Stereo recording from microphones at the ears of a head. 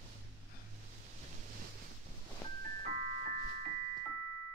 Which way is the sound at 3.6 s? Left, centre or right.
Right.